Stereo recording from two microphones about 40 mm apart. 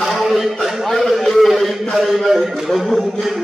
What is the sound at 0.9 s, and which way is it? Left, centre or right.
A man's voice, centre.